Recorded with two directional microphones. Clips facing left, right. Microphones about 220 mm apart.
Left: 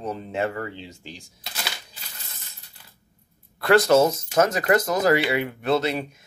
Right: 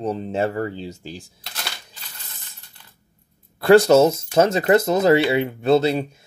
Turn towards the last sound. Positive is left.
turn(degrees=-30)  # may be behind; listen again after turning